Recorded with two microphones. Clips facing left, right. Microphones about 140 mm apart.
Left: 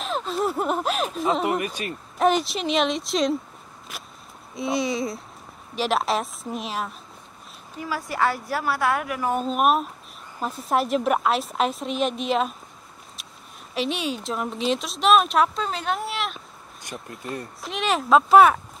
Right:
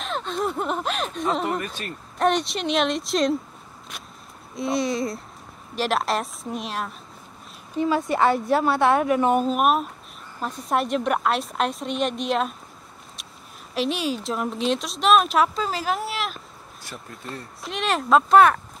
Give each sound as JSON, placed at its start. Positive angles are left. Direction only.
{"t": 0.0, "sound": "speech", "side_deg": 5}
{"t": 3.9, "sound": "a sound", "side_deg": 0}
{"t": 4.6, "sound": "speech", "side_deg": 0}
{"t": 8.1, "sound": "a woman's voice", "side_deg": -25}
{"t": 9.4, "sound": "speech", "side_deg": 0}
{"t": 13.7, "sound": "speech", "side_deg": 0}
{"t": 17.6, "sound": "speech", "side_deg": 0}